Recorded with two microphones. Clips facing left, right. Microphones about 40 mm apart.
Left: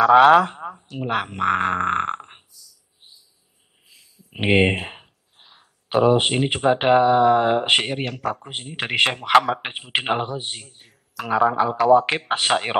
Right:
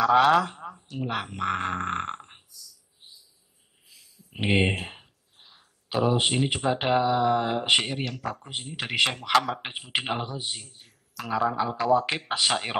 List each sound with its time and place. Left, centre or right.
0.0 s speech: left
3.9 s a sound: left
6.1 s speech: left
10.7 s a sound: left
11.5 s speech: left
11.9 s speech: left